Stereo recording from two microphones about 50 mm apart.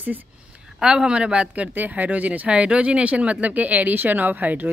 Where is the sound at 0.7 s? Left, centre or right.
Centre.